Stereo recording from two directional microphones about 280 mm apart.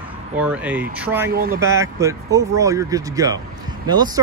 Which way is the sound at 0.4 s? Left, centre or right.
Centre.